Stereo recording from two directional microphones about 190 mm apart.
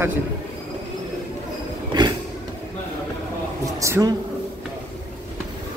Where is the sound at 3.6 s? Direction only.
15° right (ahead or behind).